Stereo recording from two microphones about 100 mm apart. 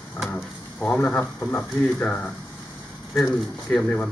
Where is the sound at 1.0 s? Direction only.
15° left (ahead or behind).